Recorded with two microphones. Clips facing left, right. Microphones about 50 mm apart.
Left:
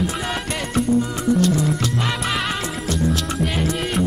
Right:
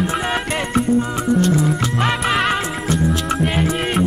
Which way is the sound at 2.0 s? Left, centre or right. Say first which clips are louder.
Right 5 dB; right.